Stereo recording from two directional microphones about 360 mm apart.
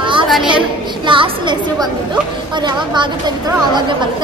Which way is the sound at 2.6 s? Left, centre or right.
Centre.